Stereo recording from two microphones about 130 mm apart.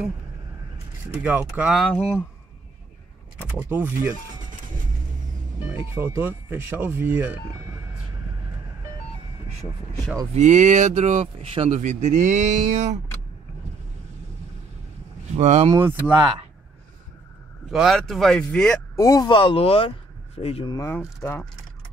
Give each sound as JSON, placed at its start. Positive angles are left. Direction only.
{"t": 1.1, "sound": "speech", "side_deg": -10}
{"t": 1.9, "sound": "speech", "side_deg": 15}
{"t": 3.3, "sound": "speech", "side_deg": -15}
{"t": 5.7, "sound": "speech", "side_deg": -20}
{"t": 10.3, "sound": "speech", "side_deg": -65}
{"t": 11.8, "sound": "speech", "side_deg": -70}
{"t": 15.3, "sound": "speech", "side_deg": -55}
{"t": 15.8, "sound": "speech", "side_deg": -25}
{"t": 17.6, "sound": "speech", "side_deg": -5}
{"t": 18.9, "sound": "speech", "side_deg": 30}
{"t": 20.7, "sound": "speech", "side_deg": 20}